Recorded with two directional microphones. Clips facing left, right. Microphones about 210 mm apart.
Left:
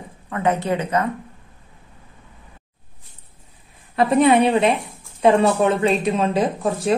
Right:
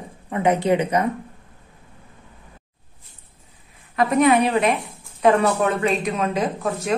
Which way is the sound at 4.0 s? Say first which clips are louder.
Left 2 dB; 30° left (ahead or behind).